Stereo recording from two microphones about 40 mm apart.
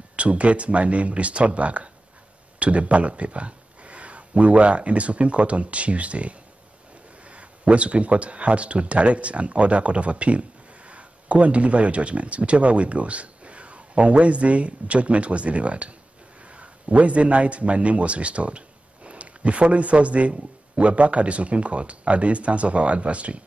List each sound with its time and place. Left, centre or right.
0.1 s speech: right